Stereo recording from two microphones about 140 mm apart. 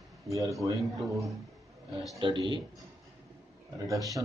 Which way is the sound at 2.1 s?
35° right (ahead or behind).